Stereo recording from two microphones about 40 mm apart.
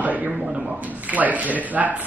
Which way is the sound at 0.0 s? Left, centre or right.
Right.